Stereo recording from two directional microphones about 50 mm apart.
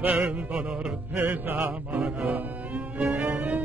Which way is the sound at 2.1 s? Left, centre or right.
Right.